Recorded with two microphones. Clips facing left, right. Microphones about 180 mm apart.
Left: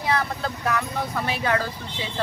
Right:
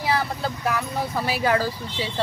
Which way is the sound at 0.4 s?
5° right (ahead or behind).